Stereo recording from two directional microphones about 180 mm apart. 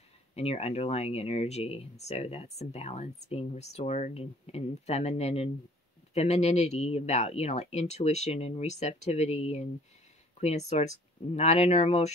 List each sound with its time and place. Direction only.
0.4 s speech: 35° left (ahead or behind)